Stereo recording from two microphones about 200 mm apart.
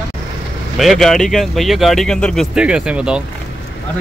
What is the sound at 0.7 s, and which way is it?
Speech, centre (ahead or behind).